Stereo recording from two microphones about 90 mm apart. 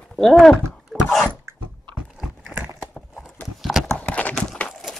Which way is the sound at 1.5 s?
30° right (ahead or behind).